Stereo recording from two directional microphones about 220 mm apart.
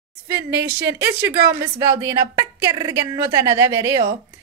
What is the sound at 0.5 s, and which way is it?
Female singing, 10° right (ahead or behind).